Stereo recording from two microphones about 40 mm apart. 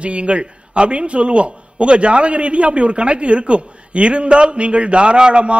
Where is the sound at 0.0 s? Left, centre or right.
Right.